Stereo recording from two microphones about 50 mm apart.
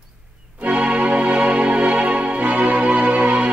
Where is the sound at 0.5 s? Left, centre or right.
Right.